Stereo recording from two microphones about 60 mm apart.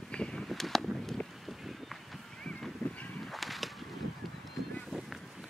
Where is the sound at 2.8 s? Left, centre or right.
Centre.